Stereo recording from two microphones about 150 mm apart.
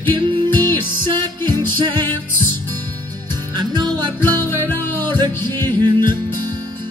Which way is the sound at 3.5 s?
30° right (ahead or behind).